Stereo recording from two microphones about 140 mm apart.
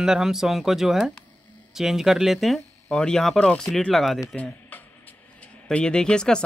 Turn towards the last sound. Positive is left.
turn(degrees=5)  # may be behind; listen again after turning